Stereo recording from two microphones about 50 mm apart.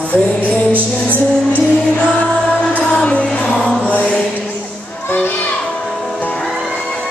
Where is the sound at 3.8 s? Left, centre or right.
Left.